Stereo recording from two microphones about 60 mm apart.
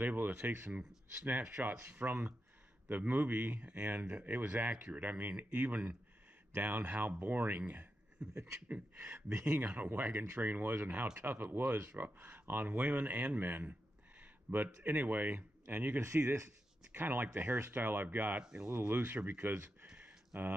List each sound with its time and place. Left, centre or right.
0.0 s speech: right
8.2 s beatboxing: right
8.6 s speech: right
9.1 s speech: right
9.5 s speech: right
10.9 s speech: right
11.1 s speech: right
14.2 s a sound: right
14.8 s speech: right
18.4 s speech: centre
18.7 s speech: right